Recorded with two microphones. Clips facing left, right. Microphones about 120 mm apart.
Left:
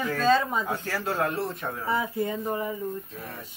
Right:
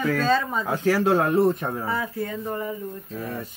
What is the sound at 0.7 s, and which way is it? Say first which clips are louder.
Speech: right 9 dB; 85° right.